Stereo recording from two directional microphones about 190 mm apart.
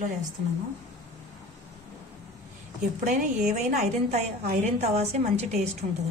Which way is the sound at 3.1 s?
40° right (ahead or behind).